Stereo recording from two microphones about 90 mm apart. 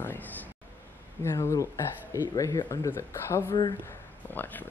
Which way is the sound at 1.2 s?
30° left (ahead or behind).